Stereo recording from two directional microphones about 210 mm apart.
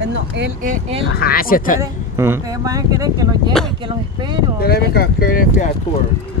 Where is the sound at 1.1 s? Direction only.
45° left (ahead or behind).